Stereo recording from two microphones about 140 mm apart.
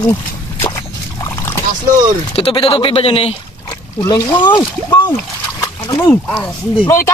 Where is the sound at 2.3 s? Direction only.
40° left (ahead or behind).